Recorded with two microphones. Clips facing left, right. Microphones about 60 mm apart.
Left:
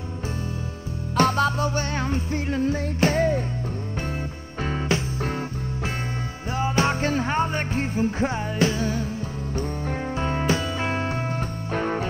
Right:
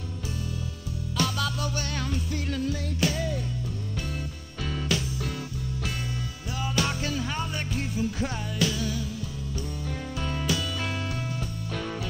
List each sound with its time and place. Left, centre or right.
1.1 s music: left
4.6 s music: left
6.5 s music: left